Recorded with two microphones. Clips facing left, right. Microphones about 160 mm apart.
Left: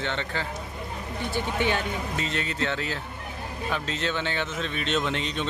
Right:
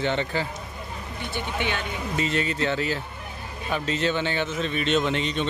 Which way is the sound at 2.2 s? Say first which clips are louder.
Right 7 dB; 5° right (ahead or behind).